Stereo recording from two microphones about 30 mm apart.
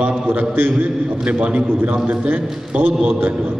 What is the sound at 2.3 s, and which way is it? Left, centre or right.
Mantra, right.